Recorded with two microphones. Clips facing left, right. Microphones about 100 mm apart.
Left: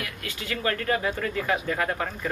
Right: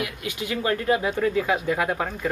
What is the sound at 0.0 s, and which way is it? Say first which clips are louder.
Speech: right 6 dB; 15° right (ahead or behind).